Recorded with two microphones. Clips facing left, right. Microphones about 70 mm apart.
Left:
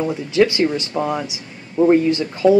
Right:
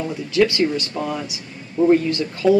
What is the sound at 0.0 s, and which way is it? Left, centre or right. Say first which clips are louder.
Speech: left 2 dB; left.